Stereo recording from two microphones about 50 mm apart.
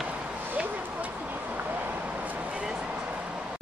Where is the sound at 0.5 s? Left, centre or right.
Right.